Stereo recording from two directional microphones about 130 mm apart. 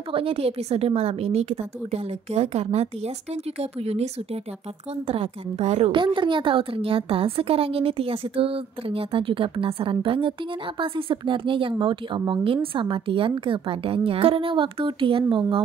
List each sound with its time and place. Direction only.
0.1 s a woman's voice: 45° right (ahead or behind)
5.9 s a woman's voice: 40° right (ahead or behind)